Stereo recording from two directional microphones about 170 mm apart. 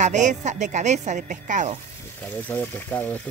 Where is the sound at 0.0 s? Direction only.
45° right (ahead or behind).